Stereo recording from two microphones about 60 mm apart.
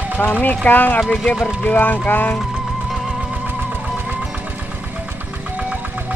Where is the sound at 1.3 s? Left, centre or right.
Centre.